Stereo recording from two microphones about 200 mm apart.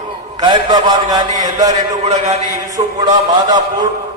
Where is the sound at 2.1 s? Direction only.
35° right (ahead or behind).